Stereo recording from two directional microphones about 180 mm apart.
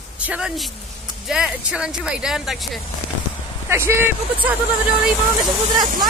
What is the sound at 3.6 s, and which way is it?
Speech, 15° right (ahead or behind).